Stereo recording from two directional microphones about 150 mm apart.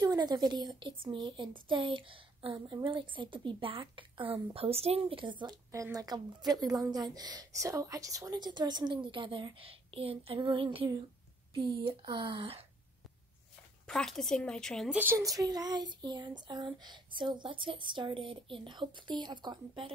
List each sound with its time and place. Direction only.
0.0 s speech: 25° right (ahead or behind)
1.0 s child singing: 30° right (ahead or behind)
5.9 s a woman's voice: 25° right (ahead or behind)
11.5 s child singing: 35° right (ahead or behind)
13.8 s speech: 5° left (ahead or behind)
15.0 s child singing: 15° right (ahead or behind)